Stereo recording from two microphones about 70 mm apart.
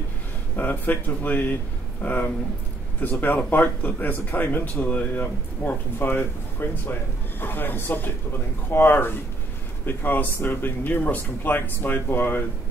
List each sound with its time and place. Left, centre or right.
0.6 s speech: left